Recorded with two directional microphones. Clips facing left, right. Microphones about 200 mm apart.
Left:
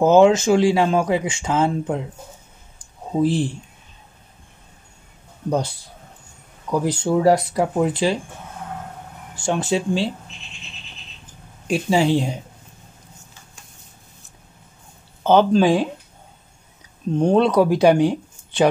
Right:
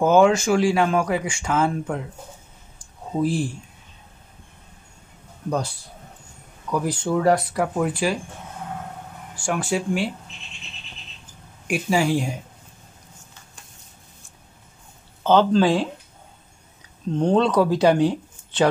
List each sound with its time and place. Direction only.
0.0 s speech: 25° left (ahead or behind)
3.2 s speech: 25° left (ahead or behind)
6.7 s speech: 25° left (ahead or behind)
9.4 s speech: 20° left (ahead or behind)
11.6 s speech: 25° left (ahead or behind)
15.2 s speech: 15° left (ahead or behind)
17.1 s speech: 10° left (ahead or behind)